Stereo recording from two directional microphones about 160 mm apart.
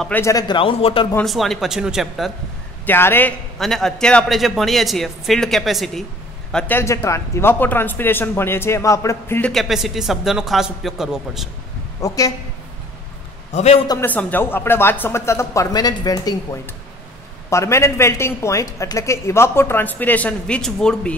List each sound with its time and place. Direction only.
0.2 s a man's voice: 20° left (ahead or behind)
1.2 s a man's voice: centre (ahead or behind)
2.9 s a woman's voice: 15° left (ahead or behind)
3.5 s a man's voice: centre (ahead or behind)
6.5 s a woman's voice: 15° left (ahead or behind)
9.5 s a man's voice: centre (ahead or behind)
12.0 s a woman's voice: 20° left (ahead or behind)
13.5 s a man's voice: 45° left (ahead or behind)
13.8 s a woman's voice: 15° left (ahead or behind)
17.5 s a woman's voice: 20° left (ahead or behind)